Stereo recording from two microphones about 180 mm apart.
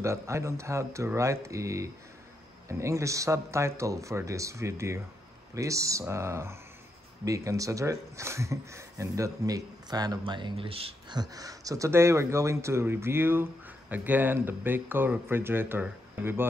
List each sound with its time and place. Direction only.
0.0 s speech: 15° right (ahead or behind)